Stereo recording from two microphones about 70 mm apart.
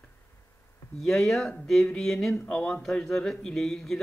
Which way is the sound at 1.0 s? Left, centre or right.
Centre.